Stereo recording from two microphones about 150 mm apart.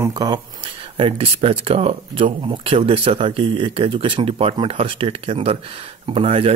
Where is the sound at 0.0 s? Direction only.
30° right (ahead or behind).